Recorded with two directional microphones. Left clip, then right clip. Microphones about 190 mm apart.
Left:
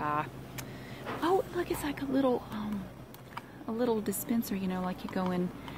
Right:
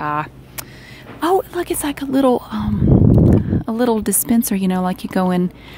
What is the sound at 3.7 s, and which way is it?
A woman's voice, 50° right (ahead or behind).